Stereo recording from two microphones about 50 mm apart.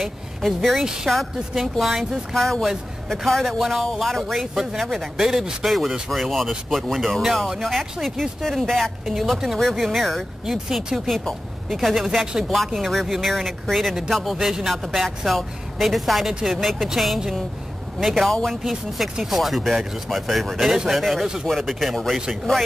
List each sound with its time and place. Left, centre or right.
0.0 s speech: centre
0.8 s a woman's voice: centre
18.6 s speech: centre